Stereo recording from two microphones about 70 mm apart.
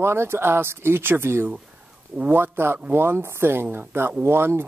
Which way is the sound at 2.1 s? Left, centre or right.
Right.